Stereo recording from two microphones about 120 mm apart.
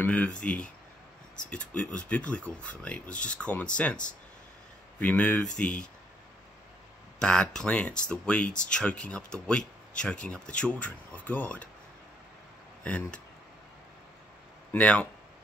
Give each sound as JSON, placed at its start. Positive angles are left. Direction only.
{"t": 0.0, "sound": "speech", "side_deg": 10}
{"t": 5.0, "sound": "speech", "side_deg": 10}
{"t": 7.2, "sound": "speech", "side_deg": 5}
{"t": 12.8, "sound": "speech", "side_deg": 10}
{"t": 14.7, "sound": "speech", "side_deg": 10}